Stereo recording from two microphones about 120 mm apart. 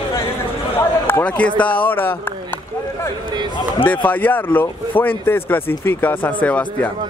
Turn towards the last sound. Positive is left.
turn(degrees=10)  # may be behind; listen again after turning